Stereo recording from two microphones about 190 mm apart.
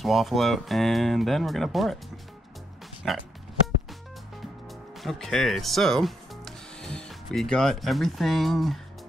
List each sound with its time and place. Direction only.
0.0 s speech: centre (ahead or behind)
3.0 s speech: centre (ahead or behind)
5.0 s speech: centre (ahead or behind)